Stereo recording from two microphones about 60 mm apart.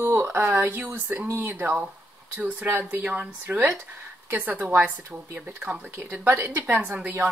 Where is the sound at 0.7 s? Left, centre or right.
Right.